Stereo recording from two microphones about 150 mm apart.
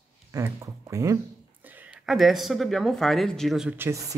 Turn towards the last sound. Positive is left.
turn(degrees=-20)  # may be behind; listen again after turning